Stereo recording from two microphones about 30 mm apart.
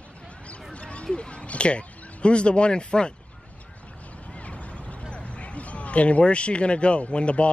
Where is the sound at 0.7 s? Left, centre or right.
Left.